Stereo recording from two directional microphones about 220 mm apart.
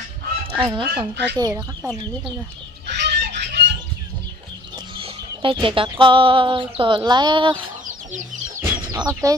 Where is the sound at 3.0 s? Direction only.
50° right (ahead or behind).